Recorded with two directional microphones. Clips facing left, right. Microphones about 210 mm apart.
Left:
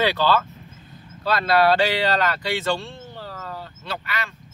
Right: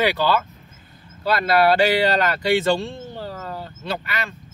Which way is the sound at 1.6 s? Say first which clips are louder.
Right 2 dB; 10° right (ahead or behind).